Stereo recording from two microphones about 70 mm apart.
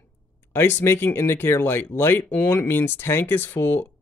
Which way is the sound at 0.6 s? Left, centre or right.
Left.